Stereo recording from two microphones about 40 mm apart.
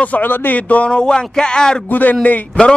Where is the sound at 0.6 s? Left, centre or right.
Left.